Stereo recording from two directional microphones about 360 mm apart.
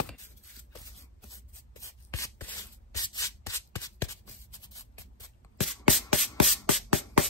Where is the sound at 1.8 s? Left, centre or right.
Centre.